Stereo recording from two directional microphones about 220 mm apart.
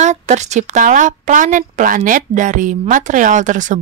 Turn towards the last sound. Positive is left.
turn(degrees=-35)  # may be behind; listen again after turning